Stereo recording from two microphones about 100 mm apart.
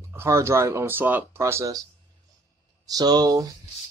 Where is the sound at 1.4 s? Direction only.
30° right (ahead or behind).